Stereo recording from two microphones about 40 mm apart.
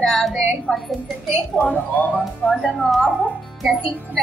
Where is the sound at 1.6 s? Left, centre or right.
Left.